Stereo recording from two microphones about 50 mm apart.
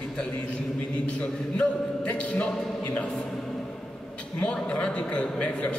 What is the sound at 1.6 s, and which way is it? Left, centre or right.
A man's voice, left.